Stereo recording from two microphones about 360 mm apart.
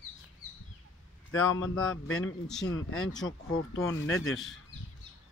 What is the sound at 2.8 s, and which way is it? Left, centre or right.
Speech, left.